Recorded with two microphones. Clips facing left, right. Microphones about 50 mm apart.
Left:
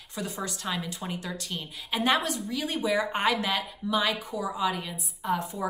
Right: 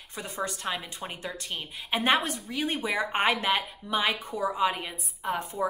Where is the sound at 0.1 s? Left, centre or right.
Right.